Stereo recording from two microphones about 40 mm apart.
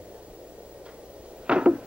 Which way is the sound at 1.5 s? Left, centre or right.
Right.